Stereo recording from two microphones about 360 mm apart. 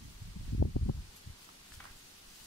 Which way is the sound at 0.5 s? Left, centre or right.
Left.